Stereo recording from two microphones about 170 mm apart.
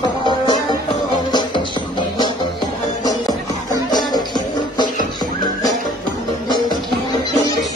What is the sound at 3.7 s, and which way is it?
Music, 25° left (ahead or behind).